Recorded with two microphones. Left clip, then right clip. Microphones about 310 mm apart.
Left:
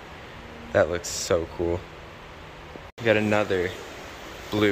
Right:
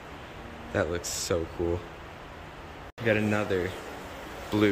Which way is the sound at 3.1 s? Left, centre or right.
Centre.